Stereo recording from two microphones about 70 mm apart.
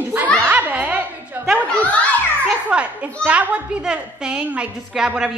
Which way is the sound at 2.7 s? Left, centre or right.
Centre.